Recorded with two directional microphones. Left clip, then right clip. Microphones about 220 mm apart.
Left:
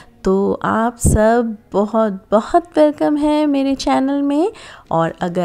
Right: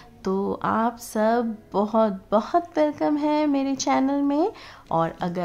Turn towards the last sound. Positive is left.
turn(degrees=20)  # may be behind; listen again after turning